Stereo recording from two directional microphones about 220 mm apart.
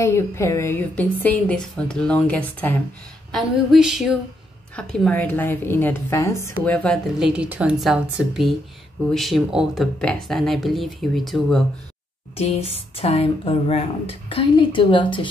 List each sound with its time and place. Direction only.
0.0 s a woman's voice: 10° left (ahead or behind)
12.4 s speech: 25° left (ahead or behind)